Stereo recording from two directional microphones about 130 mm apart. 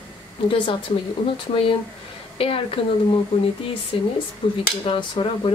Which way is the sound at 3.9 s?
45° left (ahead or behind).